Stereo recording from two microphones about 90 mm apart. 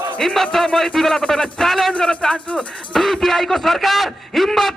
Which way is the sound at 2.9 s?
5° left (ahead or behind).